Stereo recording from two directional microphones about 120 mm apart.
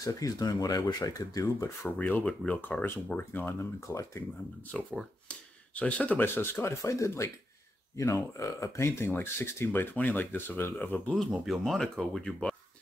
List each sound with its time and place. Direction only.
0.0 s speech: 30° left (ahead or behind)
4.7 s speech: 10° left (ahead or behind)
11.1 s speech: centre (ahead or behind)